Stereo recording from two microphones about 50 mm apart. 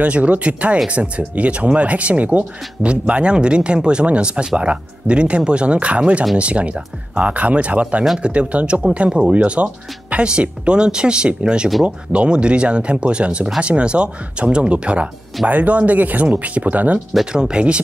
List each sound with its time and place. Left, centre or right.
0.0 s speech: right
17.3 s speech: centre